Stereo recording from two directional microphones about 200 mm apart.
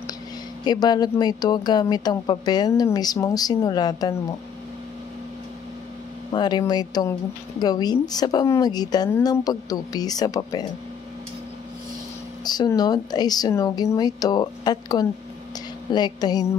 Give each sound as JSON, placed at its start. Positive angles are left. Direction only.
{"t": 0.7, "sound": "speech", "side_deg": 20}
{"t": 6.3, "sound": "speech", "side_deg": 20}
{"t": 12.4, "sound": "speech", "side_deg": 20}